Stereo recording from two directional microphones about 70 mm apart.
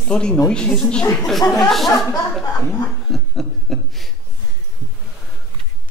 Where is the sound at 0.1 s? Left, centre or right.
Centre.